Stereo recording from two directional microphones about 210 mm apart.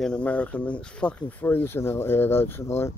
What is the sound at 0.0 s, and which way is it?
Speech, 5° left (ahead or behind).